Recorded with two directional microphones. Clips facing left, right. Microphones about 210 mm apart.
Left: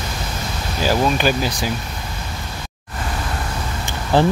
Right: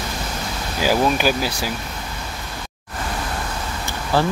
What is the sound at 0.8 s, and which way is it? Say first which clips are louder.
Speech: even; 10° right (ahead or behind).